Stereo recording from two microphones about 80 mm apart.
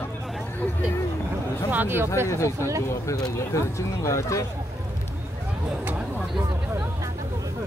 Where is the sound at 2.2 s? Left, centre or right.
Left.